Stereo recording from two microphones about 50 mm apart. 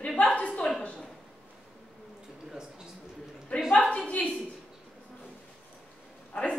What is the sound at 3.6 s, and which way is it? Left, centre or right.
Speech, left.